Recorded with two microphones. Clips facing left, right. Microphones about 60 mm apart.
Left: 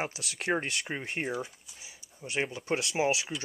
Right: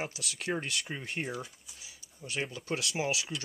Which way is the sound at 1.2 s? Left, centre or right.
Centre.